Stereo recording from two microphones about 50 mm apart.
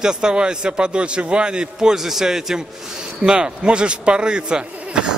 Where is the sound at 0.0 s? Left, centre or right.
Centre.